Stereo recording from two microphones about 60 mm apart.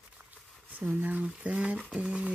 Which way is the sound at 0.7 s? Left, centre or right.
Right.